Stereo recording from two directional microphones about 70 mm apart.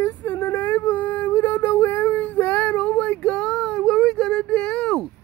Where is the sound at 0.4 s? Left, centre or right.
Left.